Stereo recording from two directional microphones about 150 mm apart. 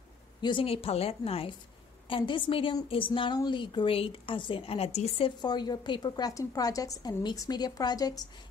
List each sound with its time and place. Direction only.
0.4 s a woman's voice: 35° left (ahead or behind)
5.4 s a woman's voice: 30° left (ahead or behind)